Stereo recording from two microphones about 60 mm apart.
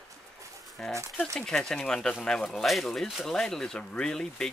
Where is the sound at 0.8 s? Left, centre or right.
Centre.